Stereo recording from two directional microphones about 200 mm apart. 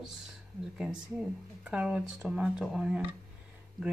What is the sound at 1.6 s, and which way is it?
Speech, 5° right (ahead or behind).